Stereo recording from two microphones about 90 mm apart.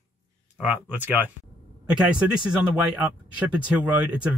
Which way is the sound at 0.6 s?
15° right (ahead or behind).